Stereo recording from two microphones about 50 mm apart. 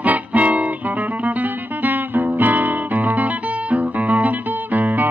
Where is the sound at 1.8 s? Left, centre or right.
Right.